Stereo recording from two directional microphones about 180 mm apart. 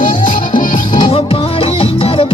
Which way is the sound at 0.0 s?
50° left (ahead or behind).